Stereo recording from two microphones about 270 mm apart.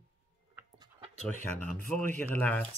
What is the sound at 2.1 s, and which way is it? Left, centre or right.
Speech, centre.